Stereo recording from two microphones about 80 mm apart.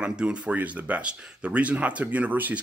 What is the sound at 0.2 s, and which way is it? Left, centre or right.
Speech, centre.